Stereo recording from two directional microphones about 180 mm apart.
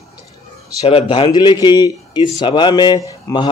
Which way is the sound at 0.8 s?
30° left (ahead or behind).